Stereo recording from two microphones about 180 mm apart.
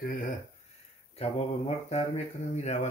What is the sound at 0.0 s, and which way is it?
Speech, 50° left (ahead or behind).